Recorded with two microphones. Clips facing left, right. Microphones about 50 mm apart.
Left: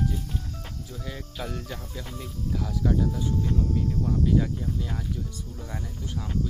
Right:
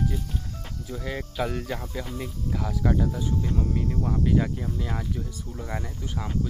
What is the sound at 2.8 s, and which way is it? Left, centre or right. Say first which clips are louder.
Speech: right 1 dB; right.